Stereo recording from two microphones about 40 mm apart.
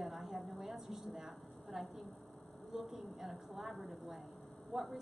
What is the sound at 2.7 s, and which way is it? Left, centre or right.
A woman's voice, centre.